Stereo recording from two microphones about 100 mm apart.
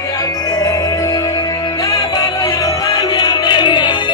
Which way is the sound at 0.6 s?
35° left (ahead or behind).